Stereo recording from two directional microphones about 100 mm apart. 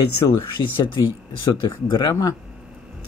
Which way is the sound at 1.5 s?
45° left (ahead or behind).